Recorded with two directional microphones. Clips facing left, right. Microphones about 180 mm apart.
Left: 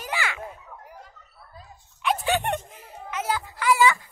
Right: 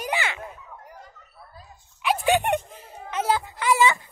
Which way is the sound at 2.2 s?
15° right (ahead or behind).